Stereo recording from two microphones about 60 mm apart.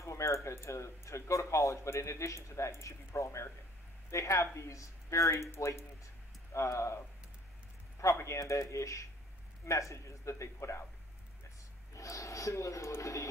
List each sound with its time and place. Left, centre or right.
0.0 s speech: left
8.0 s speech: left
11.9 s speech: left